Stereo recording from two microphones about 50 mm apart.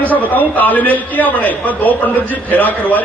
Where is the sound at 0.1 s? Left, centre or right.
Left.